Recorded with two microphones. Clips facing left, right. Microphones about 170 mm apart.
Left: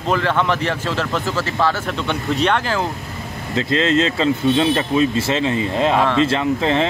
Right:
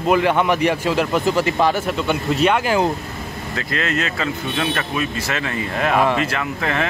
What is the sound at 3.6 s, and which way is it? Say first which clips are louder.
Speech: left 7 dB; 25° left (ahead or behind).